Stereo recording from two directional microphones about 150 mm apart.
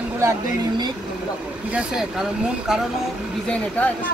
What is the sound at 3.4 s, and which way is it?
Speech, 5° left (ahead or behind).